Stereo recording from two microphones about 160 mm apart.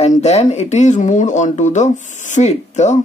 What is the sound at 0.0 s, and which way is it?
Speech, 40° left (ahead or behind).